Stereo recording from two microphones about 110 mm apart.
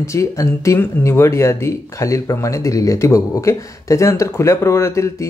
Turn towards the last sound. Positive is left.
turn(degrees=25)  # may be behind; listen again after turning